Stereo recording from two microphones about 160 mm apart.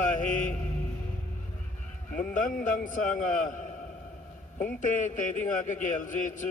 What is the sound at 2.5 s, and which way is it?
A man's voice, 55° left (ahead or behind).